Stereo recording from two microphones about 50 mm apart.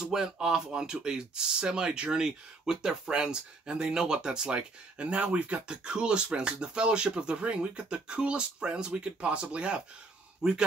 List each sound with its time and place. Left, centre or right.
0.0 s speech: centre